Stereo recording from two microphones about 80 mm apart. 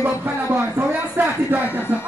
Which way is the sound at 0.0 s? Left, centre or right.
Right.